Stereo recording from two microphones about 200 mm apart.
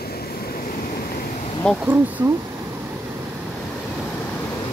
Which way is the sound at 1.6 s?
5° left (ahead or behind).